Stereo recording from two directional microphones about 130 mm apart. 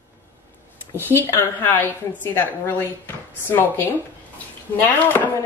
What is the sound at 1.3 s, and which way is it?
A woman's voice, 15° left (ahead or behind).